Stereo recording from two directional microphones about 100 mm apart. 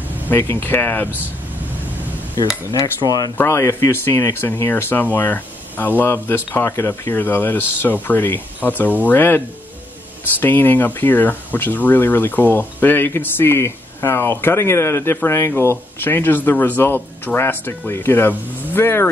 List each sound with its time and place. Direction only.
0.3 s speech: 20° left (ahead or behind)
2.3 s cutlery: 40° left (ahead or behind)
3.3 s speech: 25° left (ahead or behind)
10.4 s speech: 20° left (ahead or behind)